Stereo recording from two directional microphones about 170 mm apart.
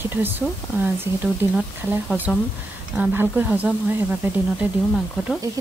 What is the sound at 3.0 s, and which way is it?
Speech, 10° right (ahead or behind).